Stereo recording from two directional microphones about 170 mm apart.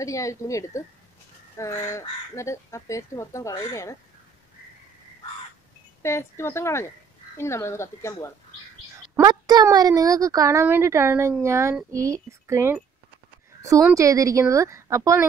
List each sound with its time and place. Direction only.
0.0 s speech: 20° left (ahead or behind)
6.0 s speech: 15° left (ahead or behind)
9.1 s a woman's voice: 20° right (ahead or behind)
13.9 s a woman's voice: 20° right (ahead or behind)